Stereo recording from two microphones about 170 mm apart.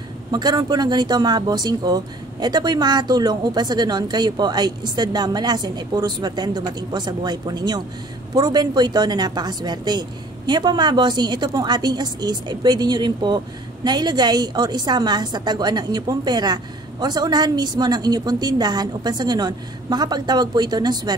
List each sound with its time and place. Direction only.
0.3 s speech: 25° right (ahead or behind)